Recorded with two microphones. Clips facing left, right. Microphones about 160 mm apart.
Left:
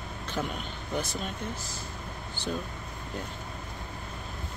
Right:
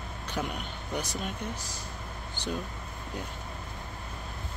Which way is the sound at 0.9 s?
15° right (ahead or behind).